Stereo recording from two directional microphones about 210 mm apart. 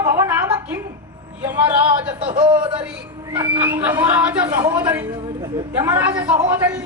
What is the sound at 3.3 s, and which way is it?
A woman's voice, 10° right (ahead or behind).